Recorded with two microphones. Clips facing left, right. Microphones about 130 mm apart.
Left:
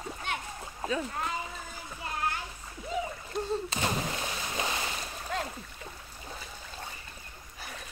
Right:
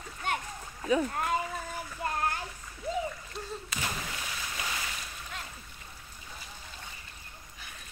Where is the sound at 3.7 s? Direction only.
30° left (ahead or behind).